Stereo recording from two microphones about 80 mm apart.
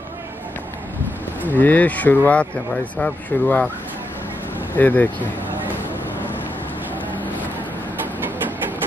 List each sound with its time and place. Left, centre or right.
1.5 s speech: left
4.7 s speech: left